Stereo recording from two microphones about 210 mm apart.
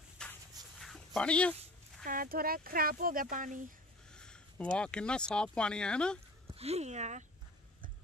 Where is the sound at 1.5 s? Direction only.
35° right (ahead or behind).